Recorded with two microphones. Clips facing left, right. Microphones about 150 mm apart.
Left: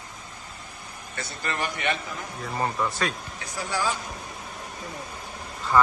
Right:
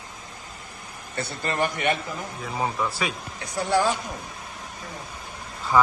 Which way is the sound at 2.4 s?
Centre (ahead or behind).